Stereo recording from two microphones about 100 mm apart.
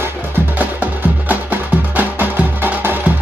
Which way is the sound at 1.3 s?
15° right (ahead or behind).